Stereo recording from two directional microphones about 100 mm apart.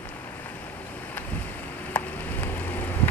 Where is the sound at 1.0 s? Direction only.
15° left (ahead or behind).